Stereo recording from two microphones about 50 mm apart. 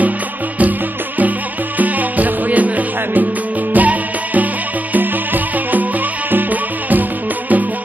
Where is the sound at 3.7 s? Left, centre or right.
Right.